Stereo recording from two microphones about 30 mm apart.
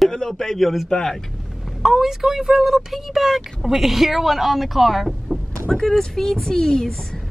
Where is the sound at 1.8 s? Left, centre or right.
Centre.